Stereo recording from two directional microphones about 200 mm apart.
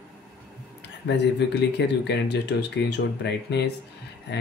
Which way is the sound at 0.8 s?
60° left (ahead or behind).